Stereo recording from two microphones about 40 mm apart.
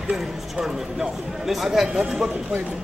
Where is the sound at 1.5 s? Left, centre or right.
Centre.